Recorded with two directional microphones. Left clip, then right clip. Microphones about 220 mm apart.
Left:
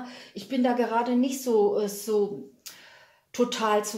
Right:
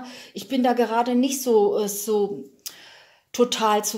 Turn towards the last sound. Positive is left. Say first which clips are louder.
# right 4 dB
turn(degrees=-40)  # may be behind; listen again after turning